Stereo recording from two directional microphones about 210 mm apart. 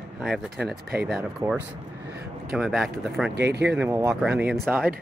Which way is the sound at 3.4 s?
55° right (ahead or behind).